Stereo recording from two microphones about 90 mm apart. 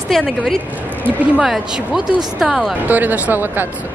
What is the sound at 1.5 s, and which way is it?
Speech, 5° right (ahead or behind).